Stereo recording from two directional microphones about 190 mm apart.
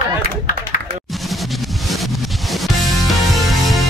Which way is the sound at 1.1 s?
Centre (ahead or behind).